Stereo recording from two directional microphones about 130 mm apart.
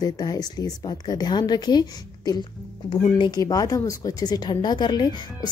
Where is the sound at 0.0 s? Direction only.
30° left (ahead or behind).